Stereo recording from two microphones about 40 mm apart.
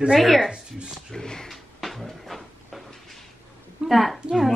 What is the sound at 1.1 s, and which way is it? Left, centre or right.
Speech, centre.